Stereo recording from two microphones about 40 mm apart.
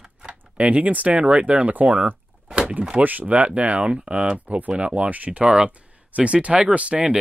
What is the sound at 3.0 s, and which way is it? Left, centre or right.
Speech, right.